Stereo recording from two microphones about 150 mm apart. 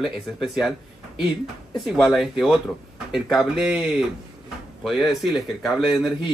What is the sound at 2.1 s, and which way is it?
Speech, centre (ahead or behind).